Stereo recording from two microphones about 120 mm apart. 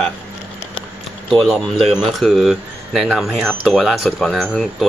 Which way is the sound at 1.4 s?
Centre (ahead or behind).